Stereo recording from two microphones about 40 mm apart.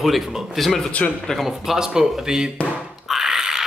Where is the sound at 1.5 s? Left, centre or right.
Centre.